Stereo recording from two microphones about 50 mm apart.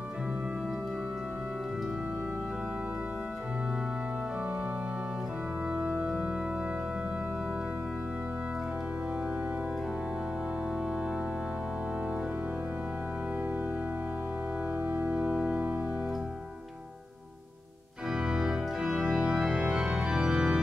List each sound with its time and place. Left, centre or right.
5.8 s organ: centre
15.0 s organ: right
18.1 s organ: centre